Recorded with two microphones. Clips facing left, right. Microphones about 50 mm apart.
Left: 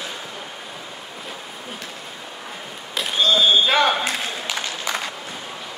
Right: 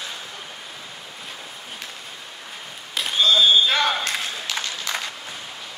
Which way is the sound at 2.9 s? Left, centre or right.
Centre.